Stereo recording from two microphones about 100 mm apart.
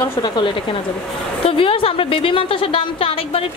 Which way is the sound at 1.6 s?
70° left (ahead or behind).